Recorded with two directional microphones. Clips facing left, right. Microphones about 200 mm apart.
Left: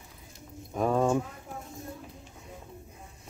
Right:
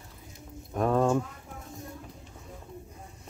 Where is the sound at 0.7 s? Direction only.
Centre (ahead or behind).